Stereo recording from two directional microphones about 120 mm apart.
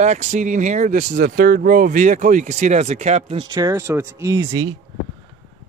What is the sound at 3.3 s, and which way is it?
Speech, 35° right (ahead or behind).